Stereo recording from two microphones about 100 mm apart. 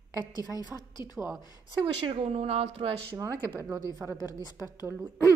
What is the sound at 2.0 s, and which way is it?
Speech, 80° right.